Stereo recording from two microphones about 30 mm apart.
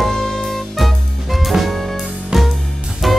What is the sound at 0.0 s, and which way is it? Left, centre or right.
Music, centre.